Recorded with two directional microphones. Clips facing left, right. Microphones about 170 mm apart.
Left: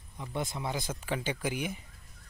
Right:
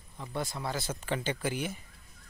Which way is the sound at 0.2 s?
20° left (ahead or behind).